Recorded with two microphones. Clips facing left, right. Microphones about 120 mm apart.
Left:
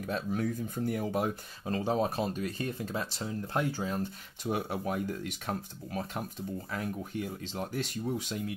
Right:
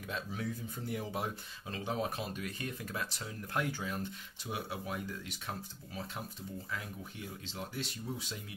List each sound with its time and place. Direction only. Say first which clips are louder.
0.0 s speech: left 7 dB; 45° left (ahead or behind)
4.5 s speech: left 7 dB; 50° left (ahead or behind)